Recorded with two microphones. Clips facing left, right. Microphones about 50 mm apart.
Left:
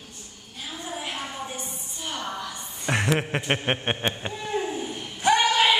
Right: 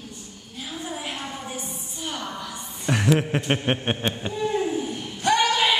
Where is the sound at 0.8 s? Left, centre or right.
Centre.